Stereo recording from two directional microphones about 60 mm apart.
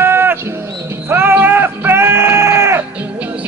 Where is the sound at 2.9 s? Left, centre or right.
Right.